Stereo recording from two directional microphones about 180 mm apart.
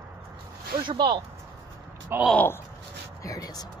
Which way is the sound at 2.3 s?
10° left (ahead or behind).